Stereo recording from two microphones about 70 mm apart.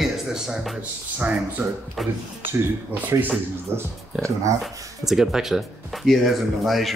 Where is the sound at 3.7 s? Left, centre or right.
Right.